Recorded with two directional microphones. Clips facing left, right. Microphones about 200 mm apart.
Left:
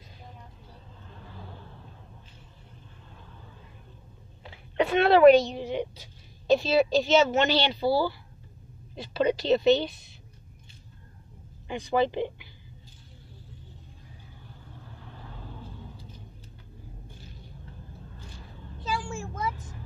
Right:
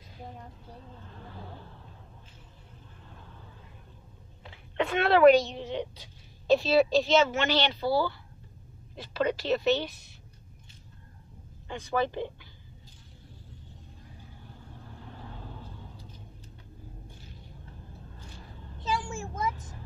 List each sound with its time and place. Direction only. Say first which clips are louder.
4.5 s a woman's voice: left 4 dB; 5° left (ahead or behind)
7.2 s speech: left 5 dB; 15° left (ahead or behind)
9.2 s speech: left 4 dB; 15° left (ahead or behind)
11.6 s speech: left 4 dB; 15° left (ahead or behind)
18.9 s vehicle: even; 20° right (ahead or behind)